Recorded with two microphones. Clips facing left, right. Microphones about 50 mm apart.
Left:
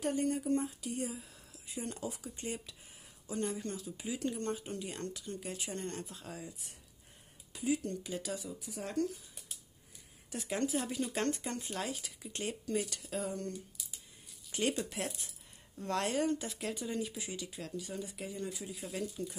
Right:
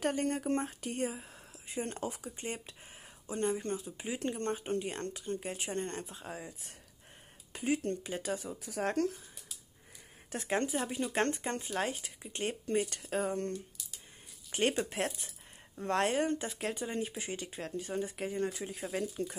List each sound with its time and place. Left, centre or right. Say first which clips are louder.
0.0 s speech: right 1 dB; right
7.5 s speech: right 2 dB; right
8.5 s speech: right 4 dB; right
10.3 s speech: right 2 dB; right
12.4 s speech: right 4 dB; right
14.5 s speech: right 3 dB; right
18.9 s speech: right 4 dB; right